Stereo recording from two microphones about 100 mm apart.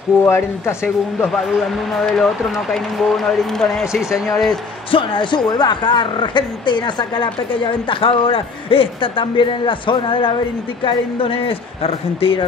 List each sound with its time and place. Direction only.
0.2 s speech: 25° left (ahead or behind)
1.2 s speech: centre (ahead or behind)
4.9 s speech: 55° left (ahead or behind)
7.9 s speech: 60° left (ahead or behind)